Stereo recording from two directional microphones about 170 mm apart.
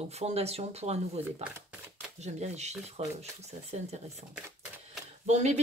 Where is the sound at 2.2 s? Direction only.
40° right (ahead or behind).